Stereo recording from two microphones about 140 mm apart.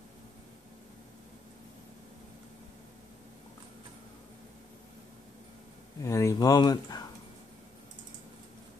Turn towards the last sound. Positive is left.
turn(degrees=30)  # may be behind; listen again after turning